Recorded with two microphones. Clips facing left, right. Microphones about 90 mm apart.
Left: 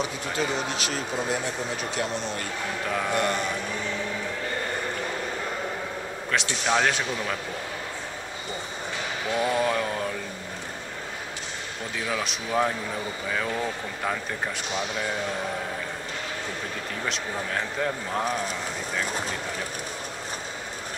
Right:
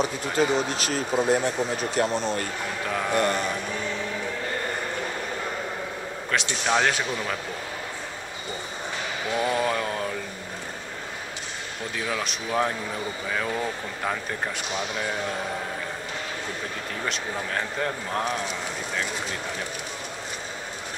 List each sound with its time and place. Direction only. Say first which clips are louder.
0.4 s speech: right 5 dB; 40° right (ahead or behind)
2.9 s a man's voice: right 2 dB; centre (ahead or behind)
6.3 s a man's voice: right 1 dB; centre (ahead or behind)
9.4 s mantra: even; centre (ahead or behind)
12.1 s a man's voice: left 1 dB; centre (ahead or behind)
17.0 s a man's voice: right 1 dB; centre (ahead or behind)